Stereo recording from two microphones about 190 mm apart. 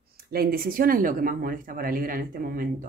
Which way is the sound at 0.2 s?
50° right (ahead or behind).